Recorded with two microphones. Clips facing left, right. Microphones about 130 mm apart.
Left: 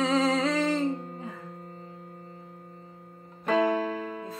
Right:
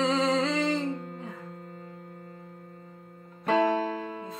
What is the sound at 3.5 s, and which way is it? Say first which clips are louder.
Music: even; 35° right (ahead or behind).